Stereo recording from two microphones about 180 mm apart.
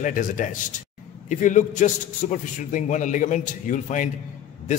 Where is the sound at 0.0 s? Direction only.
50° left (ahead or behind).